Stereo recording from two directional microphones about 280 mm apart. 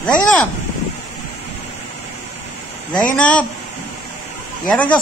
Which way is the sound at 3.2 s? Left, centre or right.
Centre.